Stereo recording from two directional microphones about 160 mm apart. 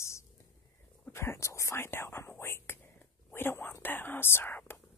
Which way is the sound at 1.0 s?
15° left (ahead or behind).